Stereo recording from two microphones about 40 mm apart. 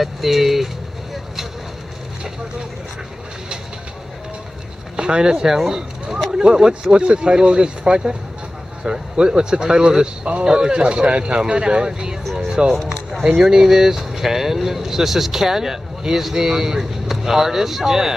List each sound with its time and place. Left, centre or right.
0.0 s speech: centre
4.9 s speech: right